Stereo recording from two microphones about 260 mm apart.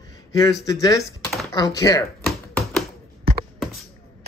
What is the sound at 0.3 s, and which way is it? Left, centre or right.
A man's voice, centre.